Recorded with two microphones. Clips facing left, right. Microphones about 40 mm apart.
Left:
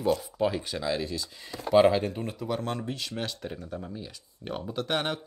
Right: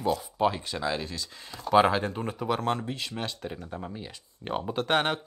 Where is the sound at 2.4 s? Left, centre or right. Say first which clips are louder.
Right 3 dB; right.